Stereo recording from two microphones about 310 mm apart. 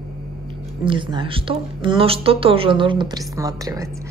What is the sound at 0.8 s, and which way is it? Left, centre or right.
Speech, centre.